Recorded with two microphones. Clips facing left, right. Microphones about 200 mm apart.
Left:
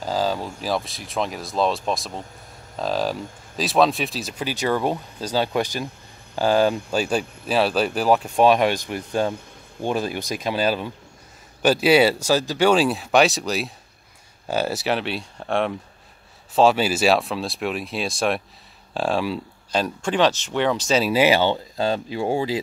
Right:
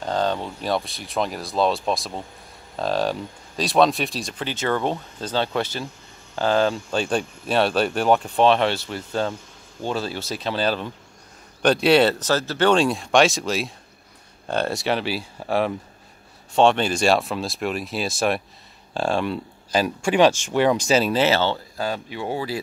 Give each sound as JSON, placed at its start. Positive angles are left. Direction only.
{"t": 0.0, "sound": "speech", "side_deg": 5}
{"t": 21.0, "sound": "speech", "side_deg": 10}